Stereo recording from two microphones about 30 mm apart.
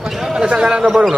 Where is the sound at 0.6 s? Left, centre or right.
Right.